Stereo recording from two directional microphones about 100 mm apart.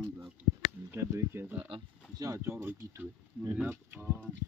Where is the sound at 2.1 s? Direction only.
35° right (ahead or behind).